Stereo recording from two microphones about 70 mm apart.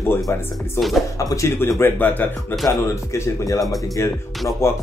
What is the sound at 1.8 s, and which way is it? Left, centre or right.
Speech, left.